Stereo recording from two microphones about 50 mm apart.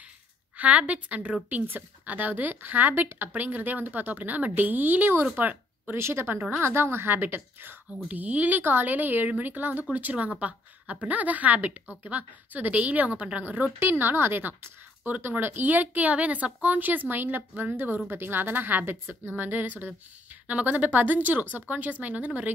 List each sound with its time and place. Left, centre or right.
0.6 s a woman's voice: right
5.4 s a sound: right
5.9 s a woman's voice: right
13.7 s speech: right